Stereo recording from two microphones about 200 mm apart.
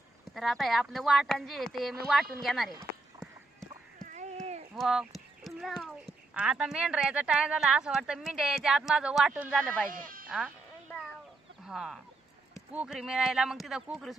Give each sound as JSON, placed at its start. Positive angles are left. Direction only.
{"t": 0.3, "sound": "speech", "side_deg": 0}
{"t": 4.1, "sound": "a sound", "side_deg": -35}
{"t": 4.7, "sound": "horse", "side_deg": 0}
{"t": 6.3, "sound": "speech", "side_deg": -5}
{"t": 9.8, "sound": "speech", "side_deg": -45}
{"t": 10.2, "sound": "speech", "side_deg": -5}
{"t": 11.6, "sound": "speech", "side_deg": 0}